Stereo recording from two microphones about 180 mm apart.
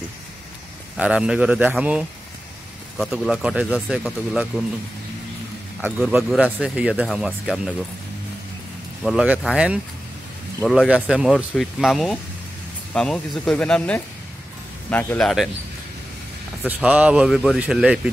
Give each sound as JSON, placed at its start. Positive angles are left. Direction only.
{"t": 0.9, "sound": "a man's voice", "side_deg": -5}
{"t": 5.8, "sound": "speech", "side_deg": -5}
{"t": 9.0, "sound": "speech", "side_deg": -5}
{"t": 16.6, "sound": "speech", "side_deg": -10}